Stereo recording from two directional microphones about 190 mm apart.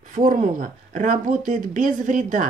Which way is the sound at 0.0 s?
40° right (ahead or behind).